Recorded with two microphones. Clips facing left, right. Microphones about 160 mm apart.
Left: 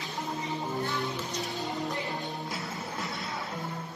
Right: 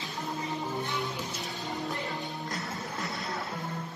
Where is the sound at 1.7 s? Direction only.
20° left (ahead or behind).